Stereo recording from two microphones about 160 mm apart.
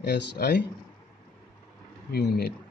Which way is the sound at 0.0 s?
90° left.